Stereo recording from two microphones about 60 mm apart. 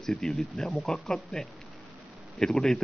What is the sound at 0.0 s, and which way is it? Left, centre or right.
Speech, centre.